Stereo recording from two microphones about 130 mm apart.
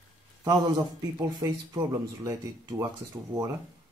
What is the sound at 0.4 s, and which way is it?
Speech, 25° right (ahead or behind).